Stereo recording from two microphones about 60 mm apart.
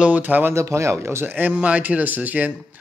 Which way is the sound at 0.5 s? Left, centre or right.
Right.